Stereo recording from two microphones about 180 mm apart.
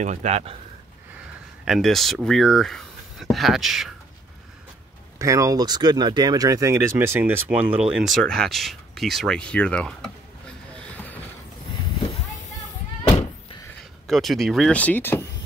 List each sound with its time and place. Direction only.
0.0 s speech: 40° right (ahead or behind)
1.6 s speech: centre (ahead or behind)
5.2 s speech: 20° right (ahead or behind); by 10.1 s 5° left (ahead or behind)
14.0 s speech: centre (ahead or behind)